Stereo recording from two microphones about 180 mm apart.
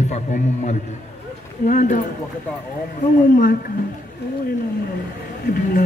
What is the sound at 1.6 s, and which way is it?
Speech, 45° left (ahead or behind).